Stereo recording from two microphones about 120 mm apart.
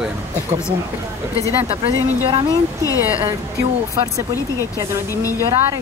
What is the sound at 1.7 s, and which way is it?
Speech, 50° right (ahead or behind).